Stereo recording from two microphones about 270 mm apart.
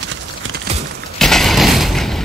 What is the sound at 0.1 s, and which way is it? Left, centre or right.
Clip-clop, right.